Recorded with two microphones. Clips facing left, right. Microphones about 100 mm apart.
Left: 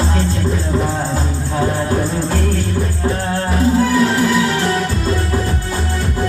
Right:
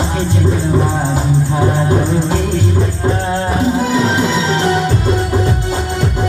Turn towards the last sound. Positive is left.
turn(degrees=-20)  # may be behind; listen again after turning